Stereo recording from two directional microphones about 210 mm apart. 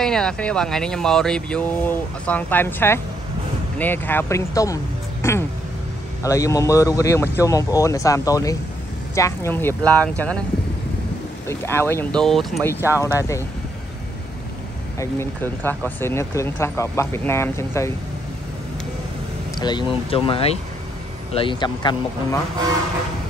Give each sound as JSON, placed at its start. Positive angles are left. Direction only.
{"t": 0.0, "sound": "speech", "side_deg": 5}
{"t": 11.4, "sound": "speech", "side_deg": 10}
{"t": 12.6, "sound": "speech", "side_deg": 15}
{"t": 15.0, "sound": "speech", "side_deg": 10}
{"t": 19.6, "sound": "speech", "side_deg": 20}